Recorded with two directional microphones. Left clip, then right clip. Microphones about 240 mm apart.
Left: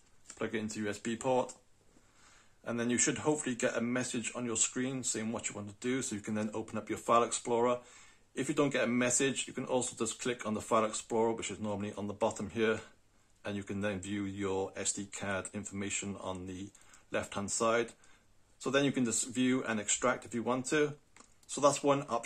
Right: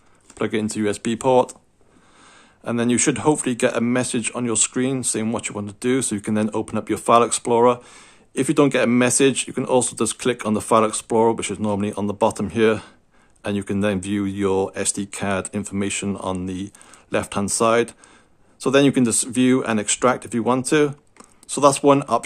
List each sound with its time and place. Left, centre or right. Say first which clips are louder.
0.4 s speech: right 14 dB; right
2.6 s speech: right 13 dB; right